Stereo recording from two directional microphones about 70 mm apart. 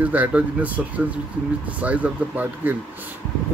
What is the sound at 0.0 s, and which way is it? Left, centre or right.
Speech, right.